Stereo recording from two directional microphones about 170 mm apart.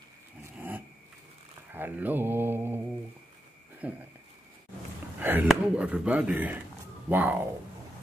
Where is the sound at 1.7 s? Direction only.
10° right (ahead or behind).